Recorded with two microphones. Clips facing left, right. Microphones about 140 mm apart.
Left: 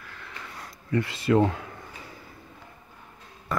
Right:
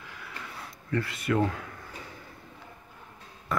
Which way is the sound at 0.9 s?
25° left (ahead or behind).